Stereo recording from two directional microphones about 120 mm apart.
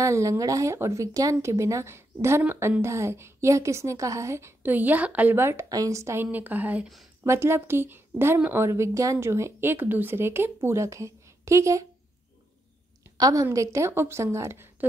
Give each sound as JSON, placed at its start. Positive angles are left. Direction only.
{"t": 0.0, "sound": "speech", "side_deg": -25}
{"t": 6.3, "sound": "speech", "side_deg": -15}
{"t": 13.2, "sound": "speech", "side_deg": -30}